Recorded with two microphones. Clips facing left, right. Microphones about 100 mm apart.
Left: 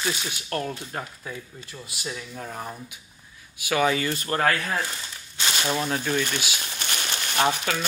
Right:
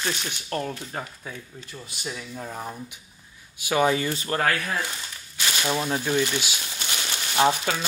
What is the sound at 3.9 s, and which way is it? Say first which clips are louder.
Speech: even; 65° left (ahead or behind).